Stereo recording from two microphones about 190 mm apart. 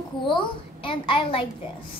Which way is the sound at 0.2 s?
25° left (ahead or behind).